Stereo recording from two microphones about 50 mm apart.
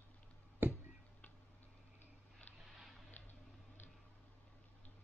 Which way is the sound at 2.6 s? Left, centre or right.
Centre.